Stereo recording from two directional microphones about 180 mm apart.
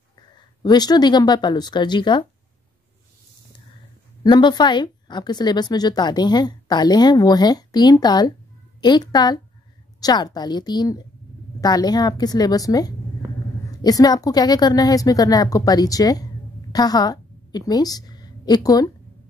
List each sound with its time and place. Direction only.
0.6 s speech: 25° left (ahead or behind)
4.2 s a woman's voice: 25° left (ahead or behind)